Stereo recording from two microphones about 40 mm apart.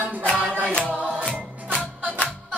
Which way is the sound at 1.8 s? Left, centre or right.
Left.